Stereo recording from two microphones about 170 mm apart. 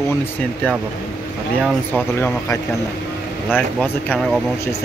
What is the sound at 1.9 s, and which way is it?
Speech, 10° left (ahead or behind).